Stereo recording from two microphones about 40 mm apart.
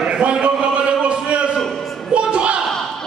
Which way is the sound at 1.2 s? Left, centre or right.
Right.